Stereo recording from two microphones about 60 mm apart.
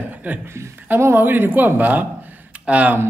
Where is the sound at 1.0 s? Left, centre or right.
Right.